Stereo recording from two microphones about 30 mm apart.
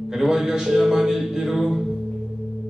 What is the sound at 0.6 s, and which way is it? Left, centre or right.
Music, centre.